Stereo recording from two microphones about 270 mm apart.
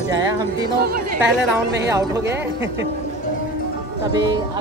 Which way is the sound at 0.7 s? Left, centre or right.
Right.